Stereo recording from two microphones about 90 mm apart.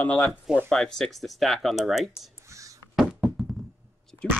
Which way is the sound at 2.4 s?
35° right (ahead or behind).